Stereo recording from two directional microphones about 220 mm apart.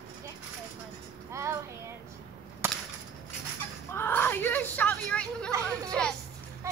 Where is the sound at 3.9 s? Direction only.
10° left (ahead or behind).